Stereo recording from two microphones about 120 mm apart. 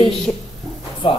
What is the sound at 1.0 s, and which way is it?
Speech, 50° left (ahead or behind).